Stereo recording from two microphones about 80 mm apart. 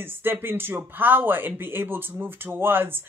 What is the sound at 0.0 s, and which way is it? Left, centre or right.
Speech, right.